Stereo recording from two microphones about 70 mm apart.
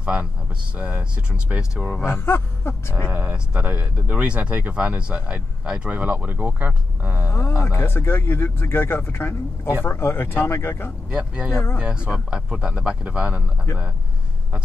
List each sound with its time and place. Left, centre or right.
0.0 s speech: centre
1.6 s a man's voice: centre
2.0 s speech: left
3.1 s speech: right
5.9 s speech: right
7.2 s speech: left
11.1 s a man's voice: centre
11.5 s speech: left
11.8 s a man's voice: centre